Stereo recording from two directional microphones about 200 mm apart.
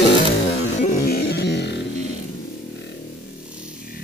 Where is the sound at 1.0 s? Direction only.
55° left (ahead or behind).